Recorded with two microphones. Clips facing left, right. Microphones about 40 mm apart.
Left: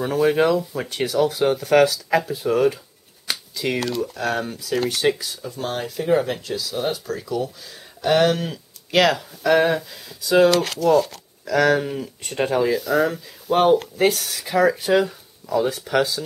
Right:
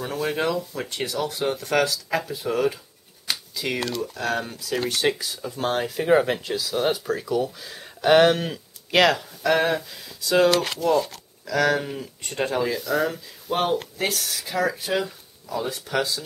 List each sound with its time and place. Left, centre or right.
0.0 s speech: centre
10.5 s speech: centre